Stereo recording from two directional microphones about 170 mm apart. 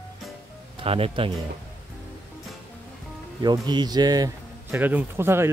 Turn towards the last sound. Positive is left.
turn(degrees=-15)  # may be behind; listen again after turning